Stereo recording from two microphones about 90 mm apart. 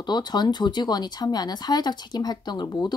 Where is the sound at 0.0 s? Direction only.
55° left (ahead or behind).